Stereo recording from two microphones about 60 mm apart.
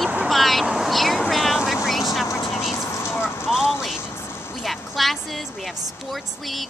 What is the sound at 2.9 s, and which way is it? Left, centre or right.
Vehicle, left.